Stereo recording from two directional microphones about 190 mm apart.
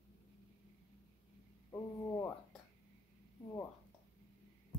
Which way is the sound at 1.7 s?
15° left (ahead or behind).